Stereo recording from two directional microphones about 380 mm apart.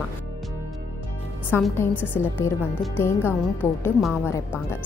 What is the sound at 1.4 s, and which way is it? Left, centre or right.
A woman's voice, centre.